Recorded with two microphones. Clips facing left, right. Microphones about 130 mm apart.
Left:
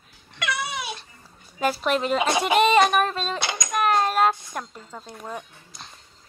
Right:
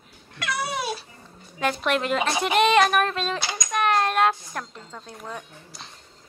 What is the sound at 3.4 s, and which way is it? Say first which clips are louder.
Speech: left 2 dB; 60° left (ahead or behind).